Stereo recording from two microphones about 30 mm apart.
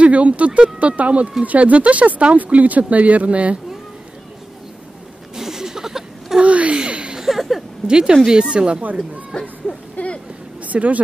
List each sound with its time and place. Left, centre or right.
0.0 s speech: right
5.3 s a sound: centre
6.4 s speech: right
6.9 s a sound: right
7.2 s speech: centre
7.8 s speech: right
9.3 s speech: left
9.9 s a sound: left
10.6 s speech: right